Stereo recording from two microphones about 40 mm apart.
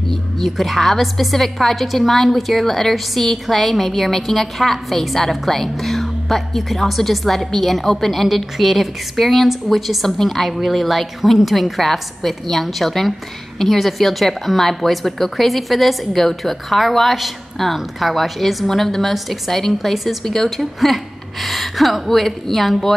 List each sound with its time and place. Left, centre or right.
0.1 s a woman's voice: centre